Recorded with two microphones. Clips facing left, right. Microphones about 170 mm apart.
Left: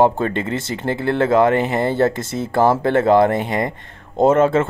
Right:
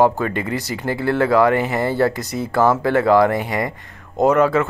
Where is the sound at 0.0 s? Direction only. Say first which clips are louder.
Left 1 dB; 25° left (ahead or behind).